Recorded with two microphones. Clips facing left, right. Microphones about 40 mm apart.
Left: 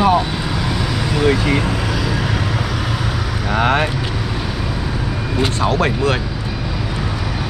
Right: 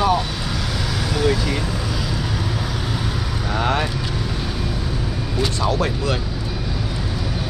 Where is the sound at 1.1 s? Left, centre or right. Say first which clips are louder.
Left 5 dB; left.